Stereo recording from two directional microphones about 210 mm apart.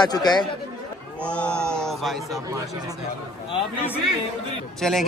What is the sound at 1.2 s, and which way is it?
A man's voice, 5° left (ahead or behind).